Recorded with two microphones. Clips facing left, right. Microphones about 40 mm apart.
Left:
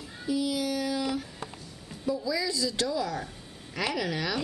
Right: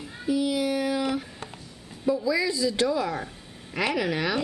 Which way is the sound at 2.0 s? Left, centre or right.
Right.